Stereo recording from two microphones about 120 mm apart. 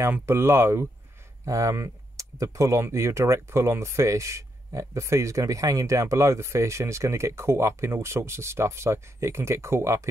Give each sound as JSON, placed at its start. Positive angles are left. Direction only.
{"t": 0.0, "sound": "speech", "side_deg": -20}